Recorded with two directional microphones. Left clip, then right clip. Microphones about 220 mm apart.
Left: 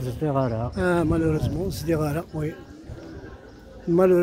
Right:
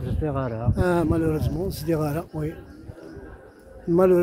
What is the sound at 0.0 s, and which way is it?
Speech, 50° left (ahead or behind).